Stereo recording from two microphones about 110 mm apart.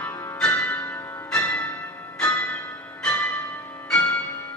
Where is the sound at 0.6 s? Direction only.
15° left (ahead or behind).